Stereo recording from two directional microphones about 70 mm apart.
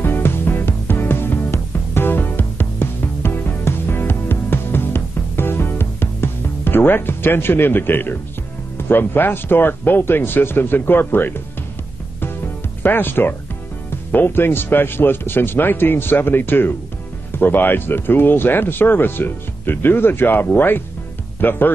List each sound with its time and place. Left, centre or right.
0.0 s music: left
8.7 s speech: left
12.8 s speech: left